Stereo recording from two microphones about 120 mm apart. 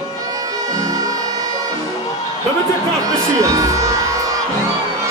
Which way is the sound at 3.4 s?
25° right (ahead or behind).